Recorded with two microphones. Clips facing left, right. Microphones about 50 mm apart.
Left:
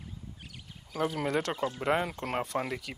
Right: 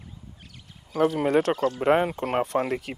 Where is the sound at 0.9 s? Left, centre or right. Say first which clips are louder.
Right 8 dB; centre.